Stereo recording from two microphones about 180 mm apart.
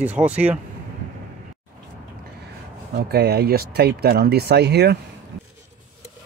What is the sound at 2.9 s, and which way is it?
Speech, 60° right (ahead or behind).